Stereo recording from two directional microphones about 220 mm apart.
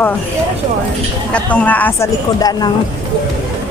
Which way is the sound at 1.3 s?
5° left (ahead or behind).